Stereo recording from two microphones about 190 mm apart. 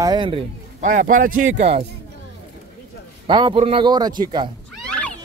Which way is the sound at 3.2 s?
25° right (ahead or behind).